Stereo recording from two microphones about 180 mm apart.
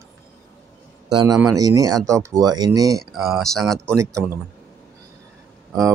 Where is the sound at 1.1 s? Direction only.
20° right (ahead or behind).